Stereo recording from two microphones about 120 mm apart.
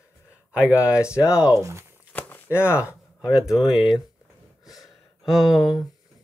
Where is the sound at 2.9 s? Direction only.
10° right (ahead or behind).